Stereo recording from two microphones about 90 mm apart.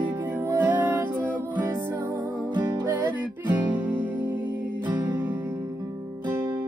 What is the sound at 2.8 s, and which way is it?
Music, 20° right (ahead or behind).